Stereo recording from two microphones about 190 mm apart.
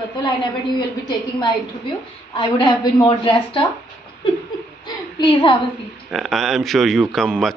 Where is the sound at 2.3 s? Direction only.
25° left (ahead or behind).